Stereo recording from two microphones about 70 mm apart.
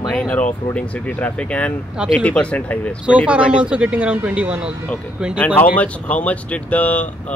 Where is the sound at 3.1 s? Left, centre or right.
Centre.